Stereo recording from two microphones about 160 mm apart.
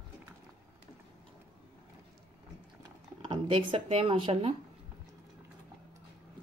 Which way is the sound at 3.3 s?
30° right (ahead or behind).